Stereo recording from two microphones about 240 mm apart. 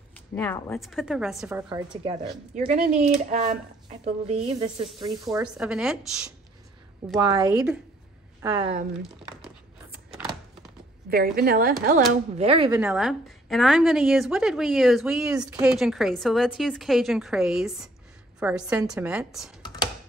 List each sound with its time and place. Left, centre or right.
0.4 s a woman's voice: centre
2.5 s speech: right; by 5.5 s centre
5.6 s a woman's voice: centre
7.2 s a woman's voice: centre
11.1 s a woman's voice: right
12.1 s speech: right
12.7 s a woman's voice: centre
19.6 s computer keyboard: centre